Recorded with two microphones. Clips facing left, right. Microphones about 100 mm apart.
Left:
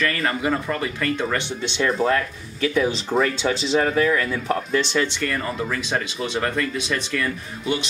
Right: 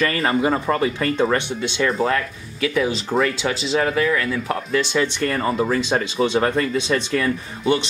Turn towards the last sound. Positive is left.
turn(degrees=-30)  # may be behind; listen again after turning